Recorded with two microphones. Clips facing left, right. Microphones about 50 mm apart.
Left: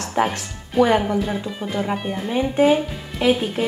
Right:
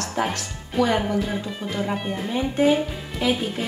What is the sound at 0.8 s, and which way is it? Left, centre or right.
Speech, centre.